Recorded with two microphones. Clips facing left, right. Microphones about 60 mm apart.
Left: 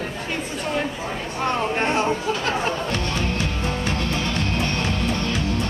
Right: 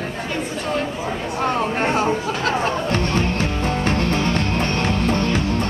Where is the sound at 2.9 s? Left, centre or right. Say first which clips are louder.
Right 4 dB; right.